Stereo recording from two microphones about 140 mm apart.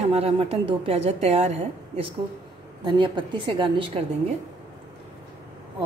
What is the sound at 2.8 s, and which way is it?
A woman's voice, 35° right (ahead or behind).